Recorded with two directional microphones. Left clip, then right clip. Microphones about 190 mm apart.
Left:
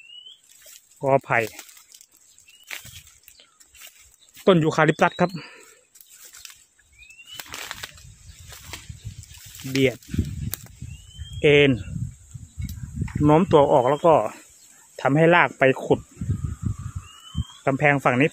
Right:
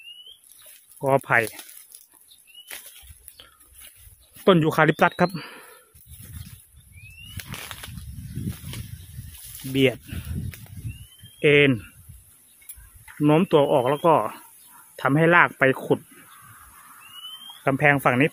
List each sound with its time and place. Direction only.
0.9 s speech: 5° right (ahead or behind)
4.5 s speech: 5° right (ahead or behind)
7.5 s a sound: 20° left (ahead or behind)
11.3 s speech: centre (ahead or behind)
13.2 s speech: 5° right (ahead or behind)
17.6 s speech: 5° right (ahead or behind)